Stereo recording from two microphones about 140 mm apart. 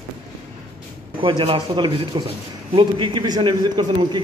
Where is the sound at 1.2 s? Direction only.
35° right (ahead or behind).